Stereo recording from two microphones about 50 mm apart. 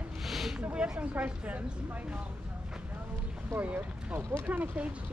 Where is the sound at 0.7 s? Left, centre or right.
Right.